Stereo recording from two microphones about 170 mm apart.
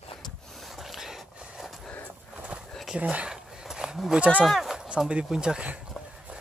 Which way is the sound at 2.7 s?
Centre (ahead or behind).